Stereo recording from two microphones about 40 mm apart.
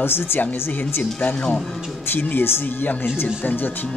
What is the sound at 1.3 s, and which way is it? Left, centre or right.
Speech, left.